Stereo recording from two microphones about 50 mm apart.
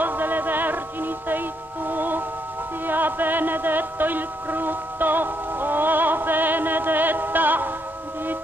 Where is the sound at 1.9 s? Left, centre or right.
Right.